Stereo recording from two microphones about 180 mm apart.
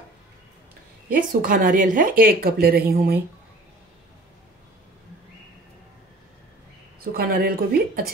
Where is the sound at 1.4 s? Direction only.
50° right (ahead or behind).